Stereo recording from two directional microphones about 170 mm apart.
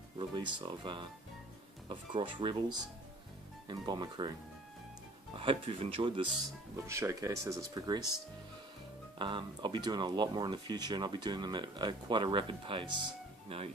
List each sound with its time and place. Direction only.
0.2 s speech: 30° right (ahead or behind)
5.3 s speech: 30° right (ahead or behind)
6.9 s speech: 15° right (ahead or behind)
9.2 s speech: 30° right (ahead or behind)